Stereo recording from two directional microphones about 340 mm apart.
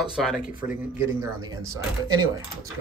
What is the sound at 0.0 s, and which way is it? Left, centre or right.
Speech, centre.